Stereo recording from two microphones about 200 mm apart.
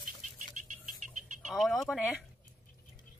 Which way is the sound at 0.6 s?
40° right (ahead or behind).